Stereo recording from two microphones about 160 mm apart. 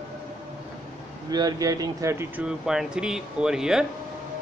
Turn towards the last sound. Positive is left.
turn(degrees=-5)  # may be behind; listen again after turning